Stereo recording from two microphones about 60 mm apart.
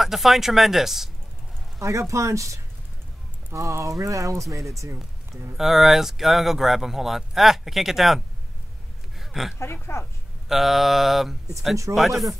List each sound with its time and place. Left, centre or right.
0.0 s speech: centre
1.8 s speech: right
5.6 s speech: centre
9.2 s a sound: centre
9.6 s speech: left
10.5 s speech: centre